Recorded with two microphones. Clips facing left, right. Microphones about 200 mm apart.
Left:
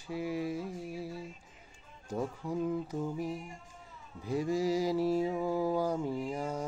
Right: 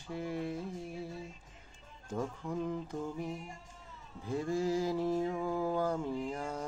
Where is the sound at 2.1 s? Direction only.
10° left (ahead or behind).